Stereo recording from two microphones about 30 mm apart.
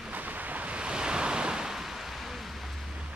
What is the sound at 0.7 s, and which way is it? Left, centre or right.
Waves, right.